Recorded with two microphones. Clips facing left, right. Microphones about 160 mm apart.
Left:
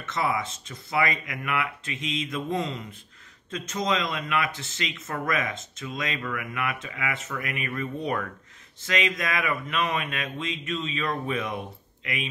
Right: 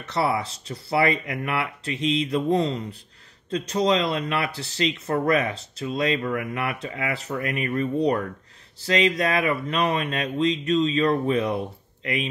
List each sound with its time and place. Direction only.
0.0 s speech: 35° right (ahead or behind)